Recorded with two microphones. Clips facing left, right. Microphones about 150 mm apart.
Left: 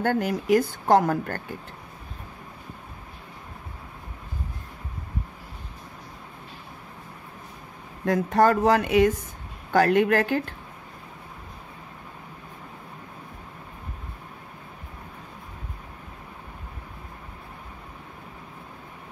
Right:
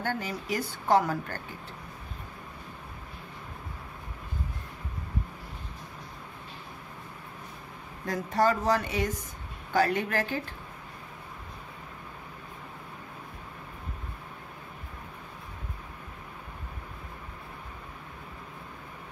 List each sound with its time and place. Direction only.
0.0 s a woman's voice: 55° left (ahead or behind)
8.0 s speech: 60° left (ahead or behind)